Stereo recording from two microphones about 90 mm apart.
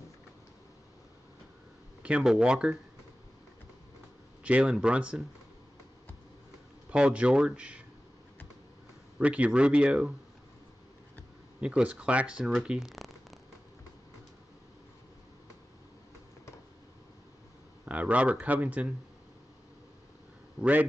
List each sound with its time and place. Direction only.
2.0 s speech: 10° right (ahead or behind)
4.4 s speech: 15° right (ahead or behind)
6.9 s speech: 10° right (ahead or behind)
9.2 s speech: 15° right (ahead or behind)
11.6 s speech: 15° right (ahead or behind)
17.8 s speech: 15° right (ahead or behind)
20.6 s a man's voice: 10° right (ahead or behind)